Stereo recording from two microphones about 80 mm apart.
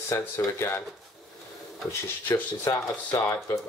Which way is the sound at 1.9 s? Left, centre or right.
Left.